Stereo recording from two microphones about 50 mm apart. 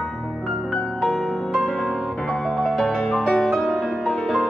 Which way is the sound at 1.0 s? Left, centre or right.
Centre.